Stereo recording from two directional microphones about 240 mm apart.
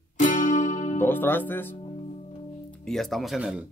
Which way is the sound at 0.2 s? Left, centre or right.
Left.